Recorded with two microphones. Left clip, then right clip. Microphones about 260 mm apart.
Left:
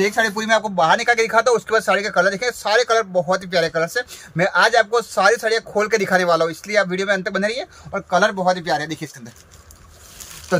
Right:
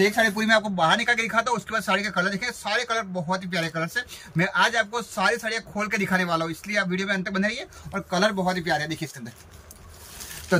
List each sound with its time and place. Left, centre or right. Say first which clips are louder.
0.0 s speech: left 3 dB; centre
10.5 s speech: left 3 dB; centre